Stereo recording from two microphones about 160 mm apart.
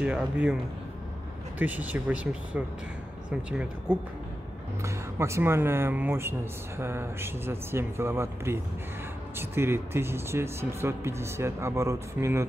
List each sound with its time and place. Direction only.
0.0 s speech: 5° right (ahead or behind)
1.6 s speech: 10° right (ahead or behind)
4.8 s speech: 15° right (ahead or behind)